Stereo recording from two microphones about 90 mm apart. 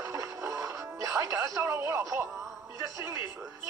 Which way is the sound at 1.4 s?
35° right (ahead or behind).